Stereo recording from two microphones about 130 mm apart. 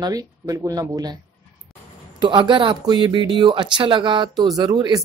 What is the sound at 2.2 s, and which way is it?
Speech, 35° right (ahead or behind).